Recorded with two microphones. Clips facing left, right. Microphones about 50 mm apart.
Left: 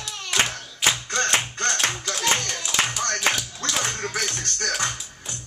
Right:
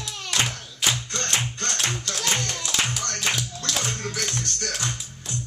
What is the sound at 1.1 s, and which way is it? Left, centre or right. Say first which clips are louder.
Music: left 4 dB; left.